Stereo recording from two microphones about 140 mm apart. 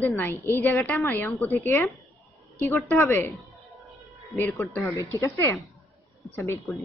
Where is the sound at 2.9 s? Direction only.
15° left (ahead or behind).